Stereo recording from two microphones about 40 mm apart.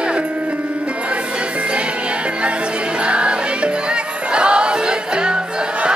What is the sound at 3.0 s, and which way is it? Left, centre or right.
Music, right.